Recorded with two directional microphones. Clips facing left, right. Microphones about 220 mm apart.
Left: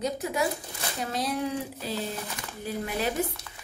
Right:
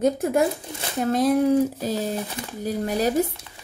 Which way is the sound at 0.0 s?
50° right (ahead or behind).